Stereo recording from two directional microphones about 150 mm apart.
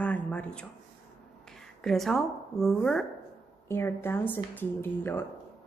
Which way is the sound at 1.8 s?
Centre (ahead or behind).